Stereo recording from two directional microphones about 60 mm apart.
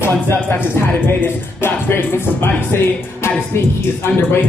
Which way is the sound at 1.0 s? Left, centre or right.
Left.